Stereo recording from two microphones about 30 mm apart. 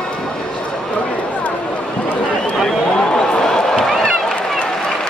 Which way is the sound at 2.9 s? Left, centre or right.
Left.